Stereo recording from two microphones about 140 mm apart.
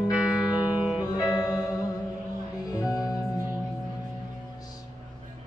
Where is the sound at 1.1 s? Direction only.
25° left (ahead or behind).